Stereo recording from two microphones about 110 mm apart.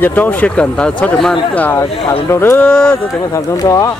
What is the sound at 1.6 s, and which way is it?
Speech, 20° left (ahead or behind).